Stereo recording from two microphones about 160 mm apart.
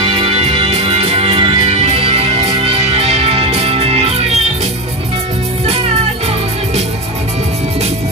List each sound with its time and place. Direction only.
0.0 s music: 35° right (ahead or behind)